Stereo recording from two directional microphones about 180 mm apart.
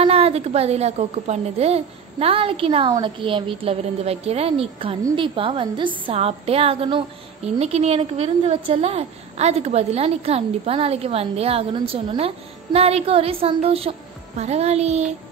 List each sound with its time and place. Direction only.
0.0 s a woman's voice: 35° right (ahead or behind)